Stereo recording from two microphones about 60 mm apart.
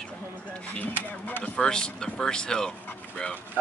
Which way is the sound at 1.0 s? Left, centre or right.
Left.